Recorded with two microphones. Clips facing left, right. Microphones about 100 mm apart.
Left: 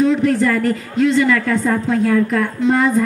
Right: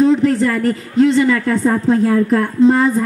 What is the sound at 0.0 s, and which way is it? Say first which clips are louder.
Speech: right 2 dB; 35° right (ahead or behind).